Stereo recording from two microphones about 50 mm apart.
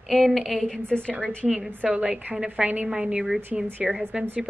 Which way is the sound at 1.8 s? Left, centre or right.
Right.